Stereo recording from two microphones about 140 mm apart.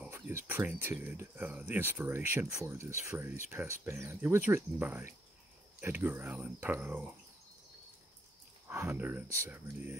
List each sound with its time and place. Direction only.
0.1 s speech: 15° right (ahead or behind)
8.6 s speech: 15° right (ahead or behind)